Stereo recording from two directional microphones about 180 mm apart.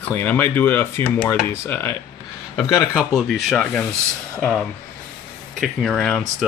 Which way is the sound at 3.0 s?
Centre (ahead or behind).